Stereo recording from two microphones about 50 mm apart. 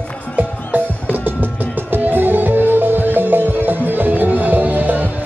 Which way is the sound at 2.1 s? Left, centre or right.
Right.